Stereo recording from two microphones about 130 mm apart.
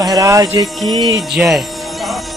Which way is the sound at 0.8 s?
Centre (ahead or behind).